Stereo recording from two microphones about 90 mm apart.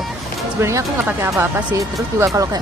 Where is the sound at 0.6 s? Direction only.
30° right (ahead or behind).